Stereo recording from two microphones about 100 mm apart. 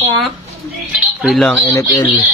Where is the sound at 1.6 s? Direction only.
35° left (ahead or behind).